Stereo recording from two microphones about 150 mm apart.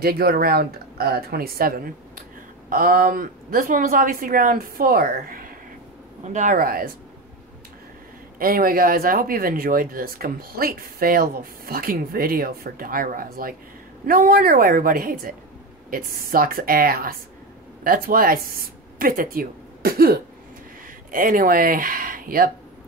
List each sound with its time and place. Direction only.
0.0 s speech: 90° right
6.2 s speech: 55° right (ahead or behind)
8.4 s speech: 75° right (ahead or behind)
21.1 s speech: 70° right (ahead or behind)